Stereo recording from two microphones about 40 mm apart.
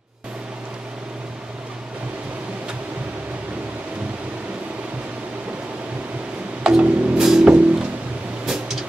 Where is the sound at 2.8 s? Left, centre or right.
Right.